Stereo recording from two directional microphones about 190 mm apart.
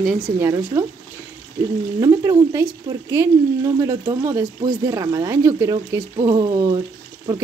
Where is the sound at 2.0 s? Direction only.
15° right (ahead or behind).